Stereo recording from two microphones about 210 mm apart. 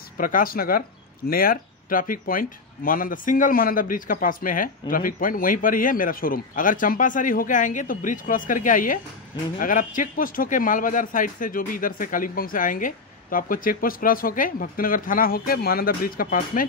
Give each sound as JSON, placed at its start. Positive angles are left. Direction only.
{"t": 0.2, "sound": "speech", "side_deg": 40}